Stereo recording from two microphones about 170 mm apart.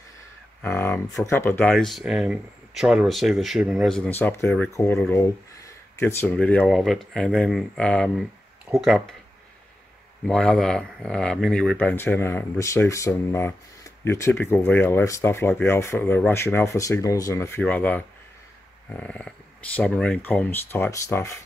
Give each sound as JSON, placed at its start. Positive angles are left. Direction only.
{"t": 0.6, "sound": "speech", "side_deg": 10}
{"t": 10.2, "sound": "speech", "side_deg": 5}